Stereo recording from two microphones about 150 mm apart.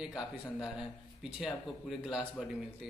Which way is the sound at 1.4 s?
5° right (ahead or behind).